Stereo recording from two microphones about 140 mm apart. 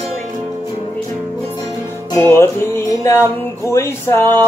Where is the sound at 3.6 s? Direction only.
20° left (ahead or behind).